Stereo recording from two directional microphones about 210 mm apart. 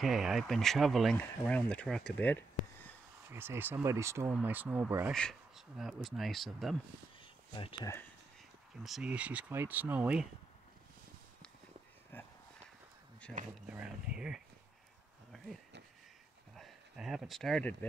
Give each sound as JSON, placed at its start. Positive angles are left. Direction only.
{"t": 0.0, "sound": "speech", "side_deg": 0}
{"t": 3.3, "sound": "speech", "side_deg": -10}
{"t": 5.1, "sound": "speech", "side_deg": 0}
{"t": 7.5, "sound": "speech", "side_deg": 25}
{"t": 8.8, "sound": "speech", "side_deg": -5}
{"t": 13.7, "sound": "speech", "side_deg": -5}
{"t": 15.3, "sound": "a sound", "side_deg": 0}
{"t": 16.5, "sound": "speech", "side_deg": 0}